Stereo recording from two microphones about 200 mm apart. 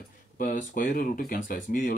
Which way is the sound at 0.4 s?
45° left (ahead or behind).